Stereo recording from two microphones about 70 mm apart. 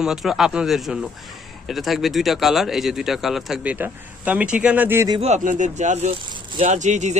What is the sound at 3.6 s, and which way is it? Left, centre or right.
Speech, right.